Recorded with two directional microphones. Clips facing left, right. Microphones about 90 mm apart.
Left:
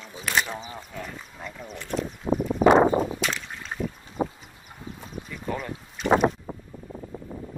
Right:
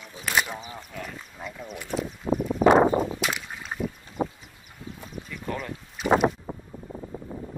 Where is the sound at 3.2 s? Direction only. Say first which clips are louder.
Even; 5° right (ahead or behind).